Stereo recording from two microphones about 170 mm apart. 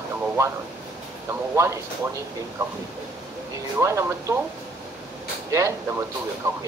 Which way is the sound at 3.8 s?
15° right (ahead or behind).